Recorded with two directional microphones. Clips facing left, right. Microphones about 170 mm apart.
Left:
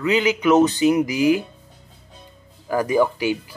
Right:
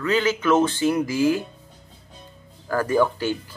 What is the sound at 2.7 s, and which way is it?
Speech, 15° left (ahead or behind).